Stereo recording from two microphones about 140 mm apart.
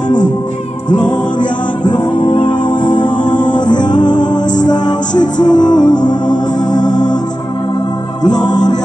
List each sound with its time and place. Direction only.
0.8 s music: 30° left (ahead or behind)
8.2 s music: 30° left (ahead or behind)